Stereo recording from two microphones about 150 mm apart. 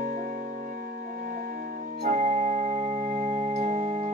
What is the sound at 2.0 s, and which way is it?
Organ, 50° right (ahead or behind).